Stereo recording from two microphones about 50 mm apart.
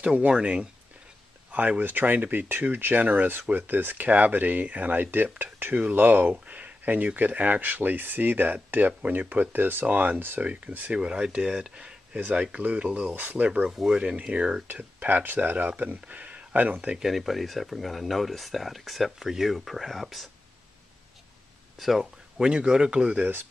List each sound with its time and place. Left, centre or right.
0.0 s speech: right
1.5 s speech: right
5.1 s speech: right
10.9 s speech: centre
12.2 s speech: right
13.1 s speech: right
15.0 s speech: right
17.1 s speech: centre
21.7 s speech: centre
22.4 s speech: centre
23.1 s speech: right